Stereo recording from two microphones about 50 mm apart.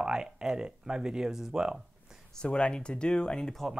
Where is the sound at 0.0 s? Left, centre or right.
Centre.